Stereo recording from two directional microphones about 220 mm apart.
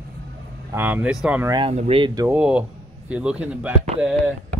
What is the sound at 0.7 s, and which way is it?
Speech, 10° right (ahead or behind).